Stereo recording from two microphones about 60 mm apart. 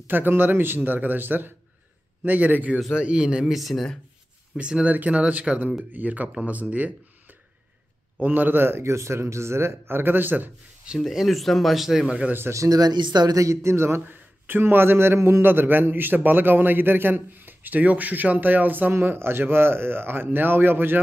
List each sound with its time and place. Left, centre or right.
0.0 s a man's voice: right; by 3.5 s centre
3.5 s speech: centre
4.6 s a man's voice: centre
8.2 s a man's voice: right
11.0 s speech: centre
12.6 s a man's voice: right